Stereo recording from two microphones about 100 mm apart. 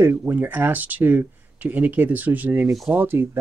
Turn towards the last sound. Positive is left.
turn(degrees=-20)  # may be behind; listen again after turning